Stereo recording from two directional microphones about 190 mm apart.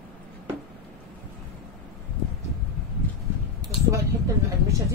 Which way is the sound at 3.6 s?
20° right (ahead or behind).